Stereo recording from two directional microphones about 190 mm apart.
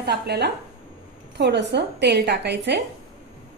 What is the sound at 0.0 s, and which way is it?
A woman's voice, 60° right (ahead or behind).